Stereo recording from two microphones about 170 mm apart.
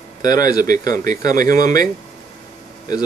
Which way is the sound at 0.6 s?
50° right (ahead or behind).